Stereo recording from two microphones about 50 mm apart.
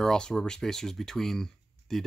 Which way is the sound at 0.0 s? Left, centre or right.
Centre.